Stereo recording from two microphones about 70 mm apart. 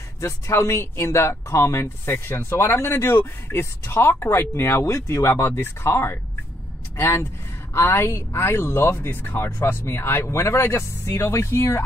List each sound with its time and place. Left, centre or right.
0.2 s speech: left